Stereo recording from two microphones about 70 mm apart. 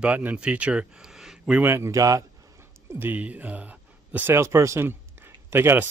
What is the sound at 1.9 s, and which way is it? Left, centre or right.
Speech, right.